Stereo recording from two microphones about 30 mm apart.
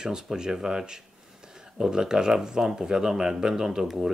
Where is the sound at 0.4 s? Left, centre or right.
Centre.